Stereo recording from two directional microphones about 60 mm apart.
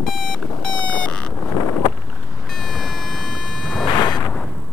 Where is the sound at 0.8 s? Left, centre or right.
Centre.